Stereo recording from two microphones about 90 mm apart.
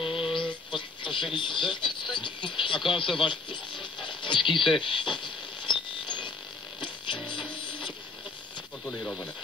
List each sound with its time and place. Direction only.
0.0 s a sound: 70° left (ahead or behind)
7.5 s music: 65° left (ahead or behind)
8.8 s speech: 15° left (ahead or behind)